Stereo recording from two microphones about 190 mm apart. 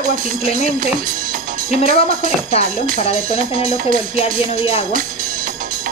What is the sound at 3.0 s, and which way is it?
Speech, 35° left (ahead or behind).